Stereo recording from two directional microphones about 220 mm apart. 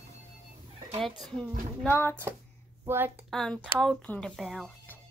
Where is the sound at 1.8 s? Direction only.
10° left (ahead or behind).